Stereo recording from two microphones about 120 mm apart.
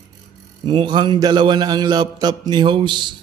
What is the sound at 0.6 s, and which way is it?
Speech, 40° right (ahead or behind).